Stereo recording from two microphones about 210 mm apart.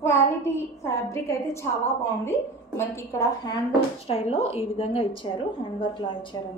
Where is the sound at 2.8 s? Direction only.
15° left (ahead or behind).